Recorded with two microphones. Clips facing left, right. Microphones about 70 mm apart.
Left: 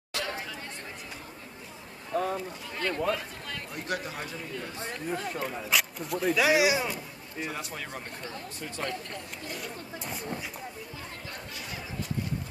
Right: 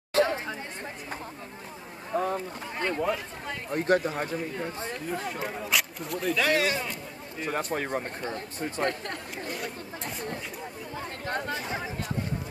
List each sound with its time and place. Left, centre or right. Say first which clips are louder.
0.1 s chatter: right 10 dB; right
2.1 s speech: right 1 dB; centre
3.7 s a man's voice: right 11 dB; right
5.7 s speech: left 1 dB; centre
7.4 s a man's voice: right 8 dB; right
8.8 s speech: right 4 dB; right
10.0 s speech: right 3 dB; centre
11.2 s chatter: right 11 dB; right
11.5 s a sound: right 8 dB; right